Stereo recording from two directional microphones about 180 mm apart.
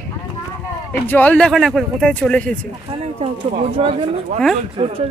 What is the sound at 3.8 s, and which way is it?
Speech, 35° right (ahead or behind).